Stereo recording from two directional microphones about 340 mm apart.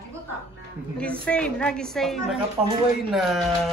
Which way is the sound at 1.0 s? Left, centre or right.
Centre.